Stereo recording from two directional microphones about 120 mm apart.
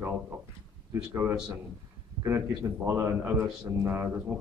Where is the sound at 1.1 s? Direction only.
20° right (ahead or behind).